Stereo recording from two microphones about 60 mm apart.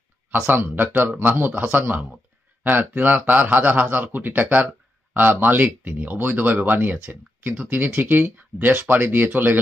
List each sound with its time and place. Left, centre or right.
0.5 s speech: right